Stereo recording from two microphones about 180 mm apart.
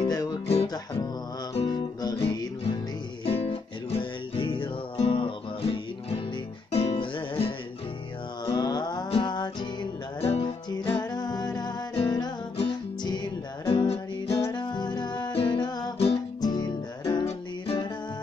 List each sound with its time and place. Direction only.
0.0 s music: 20° left (ahead or behind)
1.7 s guitar: 20° left (ahead or behind)
2.2 s music: 25° left (ahead or behind)
10.7 s music: 25° left (ahead or behind)